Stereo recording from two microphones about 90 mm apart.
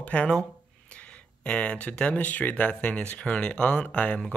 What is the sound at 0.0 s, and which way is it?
Speech, 15° left (ahead or behind).